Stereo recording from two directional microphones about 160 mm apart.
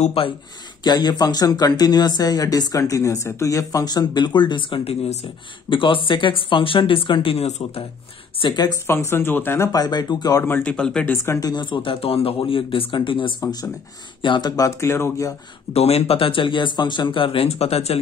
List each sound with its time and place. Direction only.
0.0 s speech: 35° left (ahead or behind)
0.8 s speech: 25° left (ahead or behind); by 7.8 s 40° left (ahead or behind)
8.4 s speech: 25° left (ahead or behind)
10.4 s speech: 10° left (ahead or behind)
11.2 s speech: 20° left (ahead or behind)
15.7 s speech: 40° left (ahead or behind)